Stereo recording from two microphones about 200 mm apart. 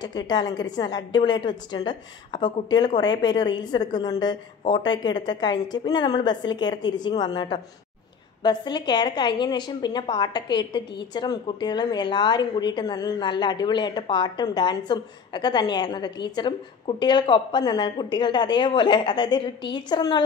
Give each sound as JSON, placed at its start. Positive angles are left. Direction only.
{"t": 0.0, "sound": "a woman's voice", "side_deg": 20}